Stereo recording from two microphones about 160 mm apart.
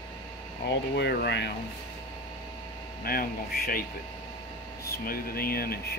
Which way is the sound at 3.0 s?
65° left (ahead or behind).